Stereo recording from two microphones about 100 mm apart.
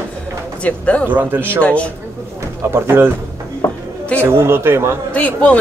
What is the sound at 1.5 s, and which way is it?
Speech, 10° left (ahead or behind).